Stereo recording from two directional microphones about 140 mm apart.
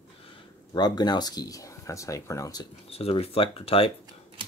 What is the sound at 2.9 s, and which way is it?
Speech, 45° left (ahead or behind).